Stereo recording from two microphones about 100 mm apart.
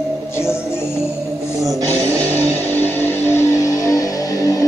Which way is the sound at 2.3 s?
20° left (ahead or behind).